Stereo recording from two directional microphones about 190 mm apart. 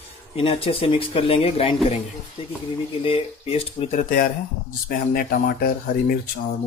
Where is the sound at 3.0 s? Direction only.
30° left (ahead or behind); by 6.3 s 50° left (ahead or behind).